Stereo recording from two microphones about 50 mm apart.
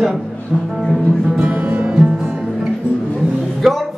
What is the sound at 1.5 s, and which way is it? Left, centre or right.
Music, right.